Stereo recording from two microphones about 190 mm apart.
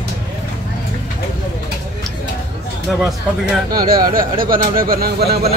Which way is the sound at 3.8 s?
50° right (ahead or behind).